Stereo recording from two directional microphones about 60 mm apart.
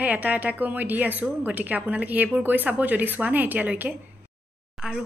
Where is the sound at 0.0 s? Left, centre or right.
Right.